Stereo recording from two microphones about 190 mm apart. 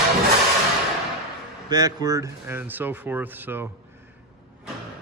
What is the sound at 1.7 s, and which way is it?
A man's voice, 20° right (ahead or behind).